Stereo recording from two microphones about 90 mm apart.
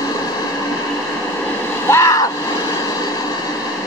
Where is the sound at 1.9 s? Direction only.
35° left (ahead or behind).